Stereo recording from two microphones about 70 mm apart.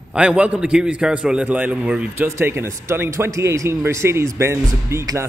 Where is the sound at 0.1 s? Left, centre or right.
Centre.